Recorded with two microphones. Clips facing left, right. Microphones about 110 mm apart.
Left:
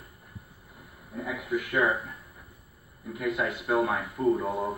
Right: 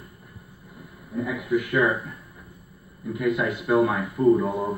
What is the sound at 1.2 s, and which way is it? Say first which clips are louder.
Speech: right 6 dB; 70° right (ahead or behind).